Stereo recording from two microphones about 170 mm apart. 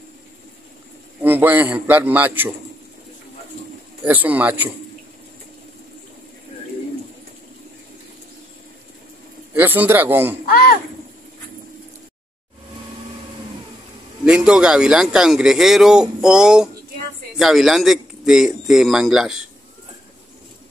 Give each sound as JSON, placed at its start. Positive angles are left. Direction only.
{"t": 1.2, "sound": "a man's voice", "side_deg": -10}
{"t": 4.0, "sound": "a man's voice", "side_deg": -10}
{"t": 9.5, "sound": "a man's voice", "side_deg": -10}
{"t": 10.4, "sound": "a sound", "side_deg": 65}
{"t": 14.2, "sound": "a man's voice", "side_deg": -5}